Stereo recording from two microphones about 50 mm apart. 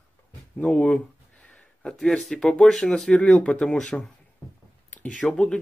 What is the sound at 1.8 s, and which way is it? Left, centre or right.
Speech, centre.